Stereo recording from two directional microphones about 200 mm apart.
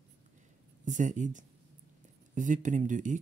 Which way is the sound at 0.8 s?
40° right (ahead or behind).